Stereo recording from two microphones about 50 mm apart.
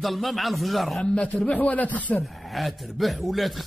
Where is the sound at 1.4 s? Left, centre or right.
Left.